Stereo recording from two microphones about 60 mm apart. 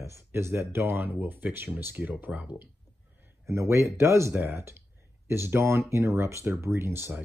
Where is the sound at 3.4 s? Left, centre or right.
Right.